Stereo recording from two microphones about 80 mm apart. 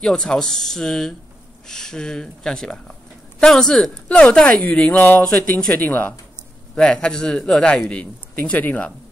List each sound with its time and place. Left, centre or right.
0.0 s speech: centre
4.9 s speech: left
6.7 s speech: centre